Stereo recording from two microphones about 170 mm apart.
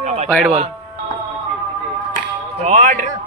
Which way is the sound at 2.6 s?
50° right (ahead or behind).